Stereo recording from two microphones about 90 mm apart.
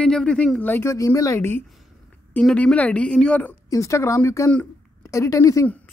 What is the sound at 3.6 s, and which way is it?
Speech, 35° left (ahead or behind).